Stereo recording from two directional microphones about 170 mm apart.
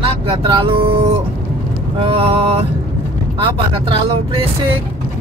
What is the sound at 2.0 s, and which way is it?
Vehicle, 30° right (ahead or behind).